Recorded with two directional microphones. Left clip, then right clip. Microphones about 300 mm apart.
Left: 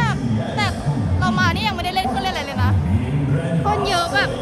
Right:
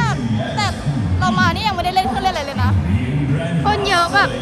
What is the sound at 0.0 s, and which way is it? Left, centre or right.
Music, centre.